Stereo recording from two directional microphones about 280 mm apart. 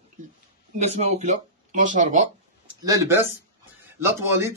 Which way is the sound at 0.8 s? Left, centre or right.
Right.